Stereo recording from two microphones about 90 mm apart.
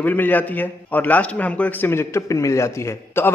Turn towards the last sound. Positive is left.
turn(degrees=30)  # may be behind; listen again after turning